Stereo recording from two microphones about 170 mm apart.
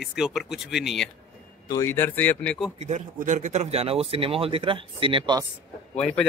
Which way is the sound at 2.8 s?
45° right (ahead or behind).